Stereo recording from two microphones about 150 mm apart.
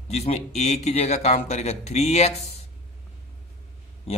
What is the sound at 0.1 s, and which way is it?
A man's voice, 45° left (ahead or behind).